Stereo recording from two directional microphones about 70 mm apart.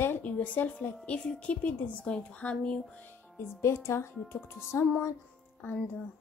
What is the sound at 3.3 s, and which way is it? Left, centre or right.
Speech, left.